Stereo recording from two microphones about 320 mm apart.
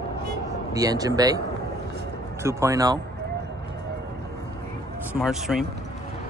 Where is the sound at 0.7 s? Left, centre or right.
Centre.